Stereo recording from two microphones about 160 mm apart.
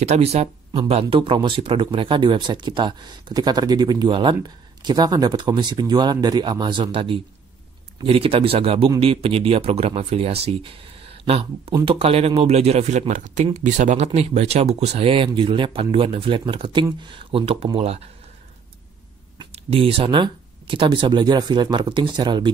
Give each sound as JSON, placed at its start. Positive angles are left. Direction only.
{"t": 0.0, "sound": "speech", "side_deg": -45}
{"t": 19.5, "sound": "speech", "side_deg": -35}